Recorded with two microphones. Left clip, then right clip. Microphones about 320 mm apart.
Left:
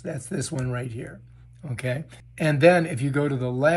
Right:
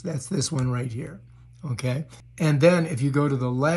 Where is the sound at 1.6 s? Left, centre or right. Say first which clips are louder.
Left 1 dB; centre.